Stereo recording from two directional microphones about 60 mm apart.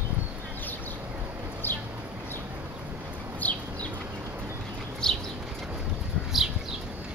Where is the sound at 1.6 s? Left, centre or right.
Left.